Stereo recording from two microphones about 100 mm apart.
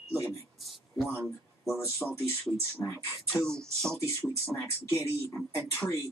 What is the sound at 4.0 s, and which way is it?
Speech, 25° left (ahead or behind).